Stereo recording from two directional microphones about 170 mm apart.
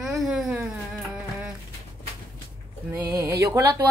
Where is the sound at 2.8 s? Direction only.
15° right (ahead or behind).